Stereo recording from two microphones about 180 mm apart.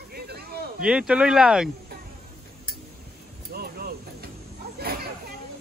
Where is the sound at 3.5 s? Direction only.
55° right (ahead or behind).